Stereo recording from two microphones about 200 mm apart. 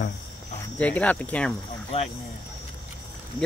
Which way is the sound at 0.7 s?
5° left (ahead or behind).